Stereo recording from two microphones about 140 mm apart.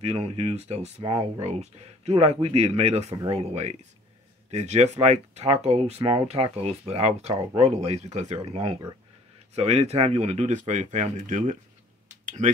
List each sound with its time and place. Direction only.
0.0 s speech: 45° right (ahead or behind)